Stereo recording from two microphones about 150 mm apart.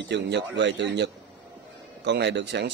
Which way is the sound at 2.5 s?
90° right.